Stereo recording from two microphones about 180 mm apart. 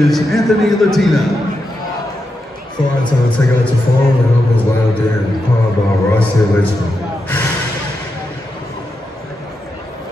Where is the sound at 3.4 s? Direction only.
10° left (ahead or behind).